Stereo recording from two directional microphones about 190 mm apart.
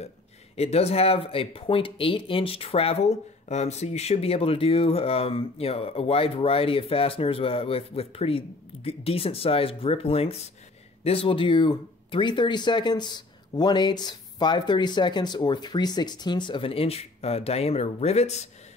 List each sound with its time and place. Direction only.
0.6 s speech: 35° left (ahead or behind)